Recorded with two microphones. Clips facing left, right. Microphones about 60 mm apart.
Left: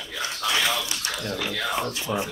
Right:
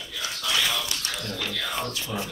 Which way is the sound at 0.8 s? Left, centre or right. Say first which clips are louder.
Left 2 dB; left.